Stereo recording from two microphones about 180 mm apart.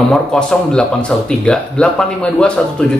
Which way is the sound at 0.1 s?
5° left (ahead or behind).